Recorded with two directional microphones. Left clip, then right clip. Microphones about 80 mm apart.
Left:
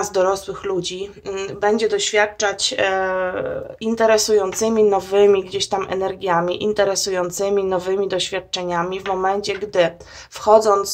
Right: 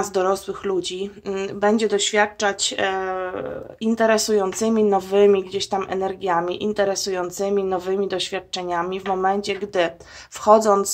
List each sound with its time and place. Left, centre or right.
0.0 s speech: right
1.3 s speech: right
10.4 s speech: right